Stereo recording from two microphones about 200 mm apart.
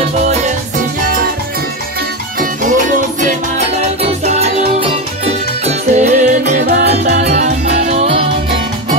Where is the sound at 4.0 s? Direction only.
35° right (ahead or behind).